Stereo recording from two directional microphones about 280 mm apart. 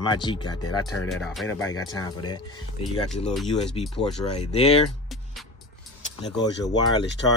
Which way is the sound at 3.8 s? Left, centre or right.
Left.